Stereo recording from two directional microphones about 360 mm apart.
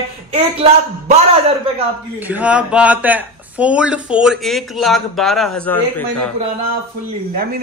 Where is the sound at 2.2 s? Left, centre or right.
Centre.